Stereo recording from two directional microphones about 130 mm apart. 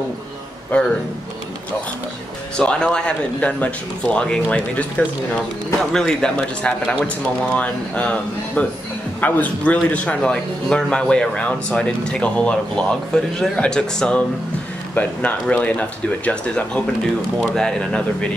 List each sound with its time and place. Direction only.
2.5 s a man's voice: 5° left (ahead or behind)